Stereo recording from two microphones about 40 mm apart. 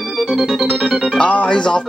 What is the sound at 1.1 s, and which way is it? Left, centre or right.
Speech, left.